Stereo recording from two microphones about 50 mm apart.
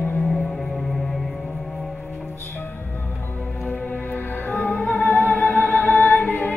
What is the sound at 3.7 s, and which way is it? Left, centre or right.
Music, left.